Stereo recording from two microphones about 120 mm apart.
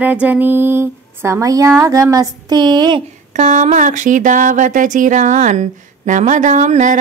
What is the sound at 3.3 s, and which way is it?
Speech, 85° right.